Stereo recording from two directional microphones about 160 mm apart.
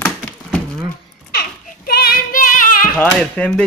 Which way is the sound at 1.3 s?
70° left (ahead or behind).